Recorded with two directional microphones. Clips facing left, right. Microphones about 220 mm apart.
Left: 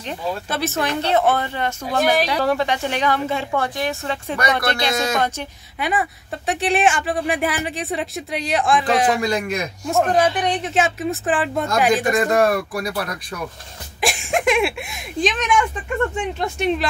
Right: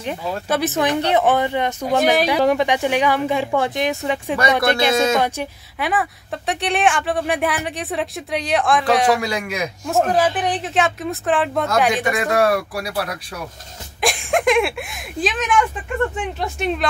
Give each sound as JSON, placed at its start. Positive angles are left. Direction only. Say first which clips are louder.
{"t": 0.0, "sound": "speech", "louder": "right 1 dB", "side_deg": -15}
{"t": 9.2, "sound": "speech", "louder": "left 2 dB", "side_deg": -10}
{"t": 12.4, "sound": "speech", "louder": "even", "side_deg": -10}